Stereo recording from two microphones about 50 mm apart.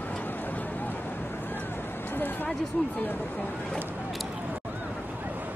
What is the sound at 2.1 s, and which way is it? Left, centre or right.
Speech, left.